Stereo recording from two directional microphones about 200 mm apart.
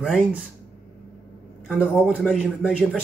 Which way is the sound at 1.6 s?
Centre (ahead or behind).